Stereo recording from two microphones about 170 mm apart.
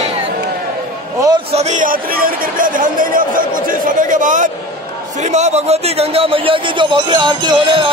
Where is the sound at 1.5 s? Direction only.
40° right (ahead or behind).